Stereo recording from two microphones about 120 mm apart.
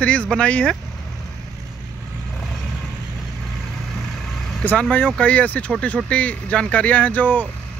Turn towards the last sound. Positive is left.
turn(degrees=15)  # may be behind; listen again after turning